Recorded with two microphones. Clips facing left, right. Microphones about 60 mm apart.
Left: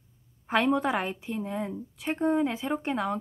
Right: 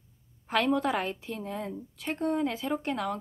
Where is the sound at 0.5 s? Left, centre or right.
Left.